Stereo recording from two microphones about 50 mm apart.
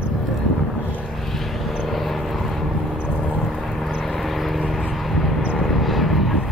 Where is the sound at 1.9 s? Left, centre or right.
Centre.